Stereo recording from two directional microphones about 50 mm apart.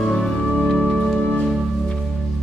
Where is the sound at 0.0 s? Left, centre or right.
Centre.